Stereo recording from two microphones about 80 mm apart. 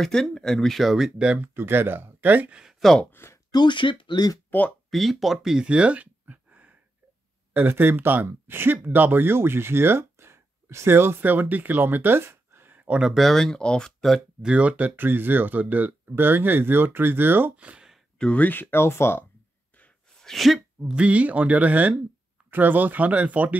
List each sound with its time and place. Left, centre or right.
0.0 s speech: centre
1.5 s speech: right
2.6 s speech: centre
3.1 s a sound: left
3.5 s speech: left
4.5 s speech: left
4.9 s speech: centre; by 12.8 s right
12.8 s speech: centre
13.1 s speech: centre
14.4 s speech: centre
18.1 s speech: centre; by 19.2 s left
20.2 s speech: centre
20.8 s speech: centre